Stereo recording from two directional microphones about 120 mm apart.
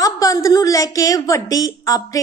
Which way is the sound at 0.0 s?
30° left (ahead or behind).